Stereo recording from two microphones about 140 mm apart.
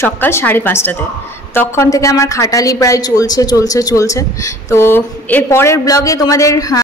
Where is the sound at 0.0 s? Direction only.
15° left (ahead or behind).